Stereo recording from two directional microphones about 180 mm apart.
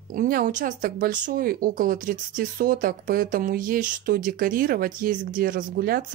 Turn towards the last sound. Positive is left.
turn(degrees=-55)  # may be behind; listen again after turning